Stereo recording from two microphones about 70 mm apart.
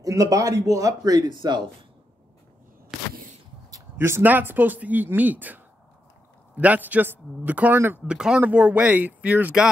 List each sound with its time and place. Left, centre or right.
0.0 s a man's voice: right
3.7 s a sound: right
4.2 s speech: right
8.1 s speech: centre